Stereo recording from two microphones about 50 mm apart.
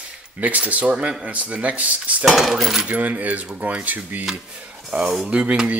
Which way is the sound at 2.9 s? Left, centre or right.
Right.